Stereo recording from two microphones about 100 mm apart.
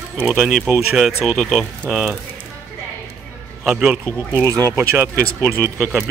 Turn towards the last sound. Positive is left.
turn(degrees=-20)  # may be behind; listen again after turning